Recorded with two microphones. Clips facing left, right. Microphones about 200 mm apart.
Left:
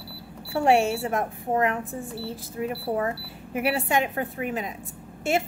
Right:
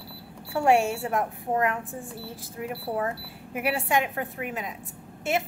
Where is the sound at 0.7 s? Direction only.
20° left (ahead or behind).